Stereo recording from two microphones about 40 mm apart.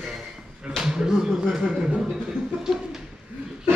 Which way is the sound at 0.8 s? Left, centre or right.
Centre.